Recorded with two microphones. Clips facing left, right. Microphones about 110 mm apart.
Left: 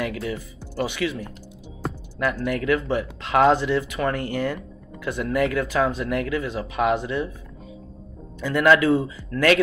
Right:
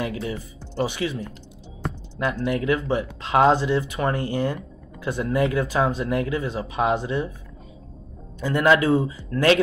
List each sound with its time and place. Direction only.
0.0 s speech: 25° right (ahead or behind)
8.4 s speech: 30° right (ahead or behind)